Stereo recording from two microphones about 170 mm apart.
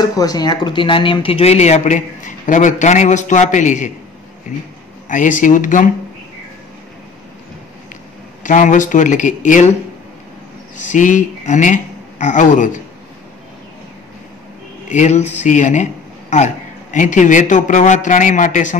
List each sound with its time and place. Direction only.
0.0 s speech: 20° left (ahead or behind); by 3.9 s 45° left (ahead or behind)
5.0 s speech: 50° left (ahead or behind)
8.5 s speech: 50° left (ahead or behind)
10.9 s speech: 50° left (ahead or behind)
14.9 s speech: 45° left (ahead or behind)